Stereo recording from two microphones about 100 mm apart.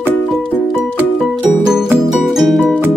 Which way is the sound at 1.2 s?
5° right (ahead or behind).